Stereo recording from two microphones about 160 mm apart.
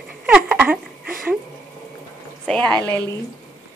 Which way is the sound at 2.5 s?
5° left (ahead or behind).